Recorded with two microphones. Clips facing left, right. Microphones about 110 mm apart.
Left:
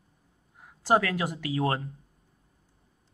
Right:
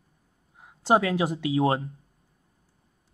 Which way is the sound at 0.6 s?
20° right (ahead or behind).